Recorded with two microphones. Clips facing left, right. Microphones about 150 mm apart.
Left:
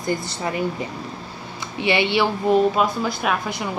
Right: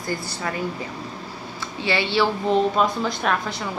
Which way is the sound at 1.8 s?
20° left (ahead or behind).